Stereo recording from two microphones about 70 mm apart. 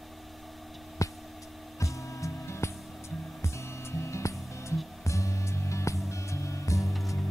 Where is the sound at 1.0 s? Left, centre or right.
Left.